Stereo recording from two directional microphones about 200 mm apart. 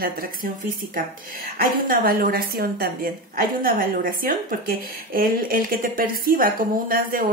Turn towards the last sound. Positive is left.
turn(degrees=-45)  # may be behind; listen again after turning